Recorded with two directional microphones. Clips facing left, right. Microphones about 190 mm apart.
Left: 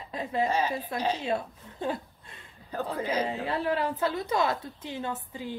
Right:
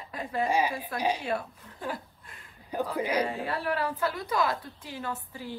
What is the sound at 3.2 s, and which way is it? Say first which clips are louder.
A woman's voice: left 1 dB; 20° left (ahead or behind).